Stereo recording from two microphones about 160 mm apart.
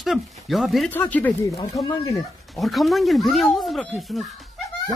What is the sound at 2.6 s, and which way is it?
Speech, centre (ahead or behind).